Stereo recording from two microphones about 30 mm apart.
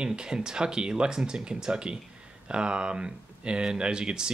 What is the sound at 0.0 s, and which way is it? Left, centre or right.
Speech, right.